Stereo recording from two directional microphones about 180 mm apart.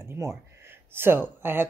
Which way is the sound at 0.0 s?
15° right (ahead or behind).